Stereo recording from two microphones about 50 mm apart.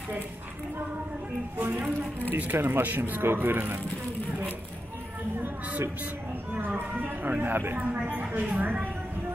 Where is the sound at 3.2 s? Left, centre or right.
Right.